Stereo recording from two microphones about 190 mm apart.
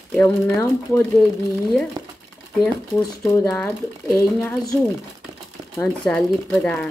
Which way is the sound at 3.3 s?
10° left (ahead or behind).